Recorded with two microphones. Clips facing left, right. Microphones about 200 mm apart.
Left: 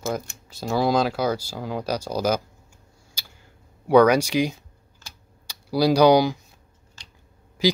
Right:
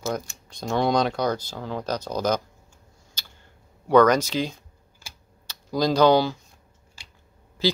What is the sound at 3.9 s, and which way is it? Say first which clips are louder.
Speech: left 1 dB; 10° left (ahead or behind).